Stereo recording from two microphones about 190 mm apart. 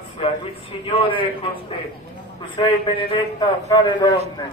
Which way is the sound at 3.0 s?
30° left (ahead or behind).